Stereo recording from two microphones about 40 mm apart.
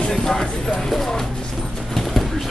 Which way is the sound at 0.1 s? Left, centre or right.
Centre.